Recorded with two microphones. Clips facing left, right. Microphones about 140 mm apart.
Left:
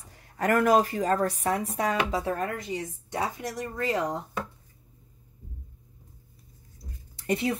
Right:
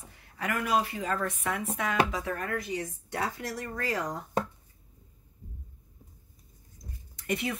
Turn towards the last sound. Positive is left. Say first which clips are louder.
# left 5 dB
turn(degrees=30)  # may be behind; listen again after turning